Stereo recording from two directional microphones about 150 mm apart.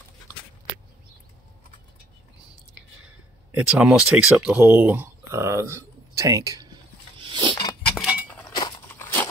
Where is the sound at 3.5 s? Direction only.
5° right (ahead or behind); by 6.7 s 20° right (ahead or behind).